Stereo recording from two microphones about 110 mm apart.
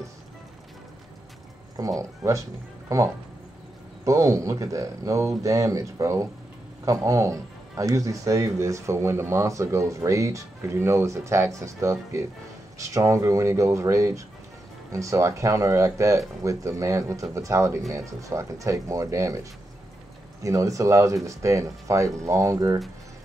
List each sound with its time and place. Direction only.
1.8 s speech: 30° right (ahead or behind)
20.4 s speech: 30° right (ahead or behind)